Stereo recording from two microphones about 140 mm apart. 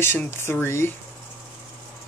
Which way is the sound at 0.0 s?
15° left (ahead or behind).